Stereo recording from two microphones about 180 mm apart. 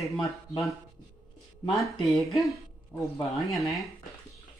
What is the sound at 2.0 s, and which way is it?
Speech, centre (ahead or behind).